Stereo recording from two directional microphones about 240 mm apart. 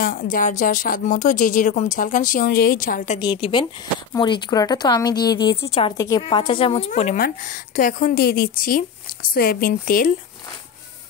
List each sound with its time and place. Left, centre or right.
0.0 s a woman's voice: left
3.2 s a woman's voice: centre; by 10.1 s left